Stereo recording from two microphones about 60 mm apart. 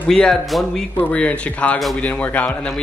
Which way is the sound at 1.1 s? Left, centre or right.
Centre.